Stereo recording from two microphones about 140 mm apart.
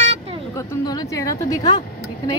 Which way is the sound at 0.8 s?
25° left (ahead or behind).